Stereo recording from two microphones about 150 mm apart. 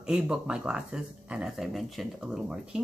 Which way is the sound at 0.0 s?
5° right (ahead or behind).